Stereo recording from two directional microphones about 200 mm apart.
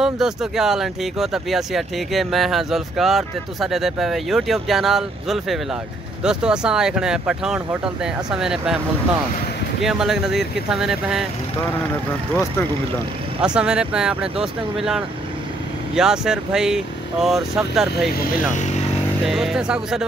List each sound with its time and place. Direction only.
0.0 s speech: centre (ahead or behind)
13.4 s speech: 5° right (ahead or behind)
18.1 s speech: 40° left (ahead or behind)
19.2 s speech: centre (ahead or behind)